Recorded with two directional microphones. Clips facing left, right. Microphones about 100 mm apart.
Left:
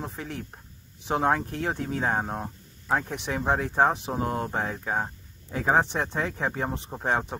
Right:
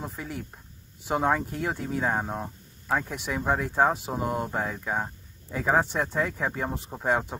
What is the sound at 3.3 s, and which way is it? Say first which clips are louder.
Speech: left 1 dB; 25° left (ahead or behind).